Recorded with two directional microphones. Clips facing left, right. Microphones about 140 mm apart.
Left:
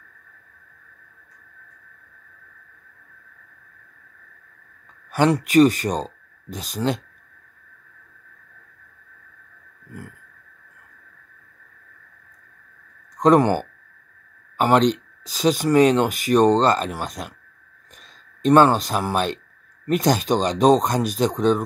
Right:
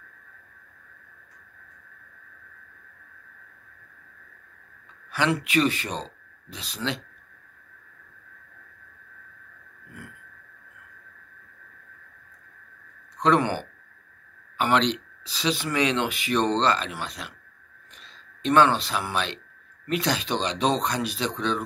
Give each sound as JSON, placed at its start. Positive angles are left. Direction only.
{"t": 5.1, "sound": "speech", "side_deg": 45}
{"t": 13.2, "sound": "speech", "side_deg": 45}
{"t": 18.4, "sound": "speech", "side_deg": 45}